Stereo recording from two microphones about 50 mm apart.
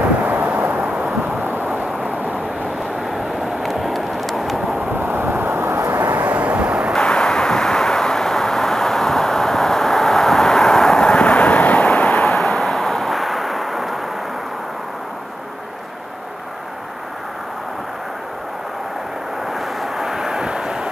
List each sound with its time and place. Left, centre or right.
0.0 s vehicle: right
1.3 s a sound: right
3.1 s vehicle: centre
4.9 s vehicle: right
5.9 s vehicle: right
7.0 s vehicle: centre
12.2 s a sound: centre
19.8 s vehicle: centre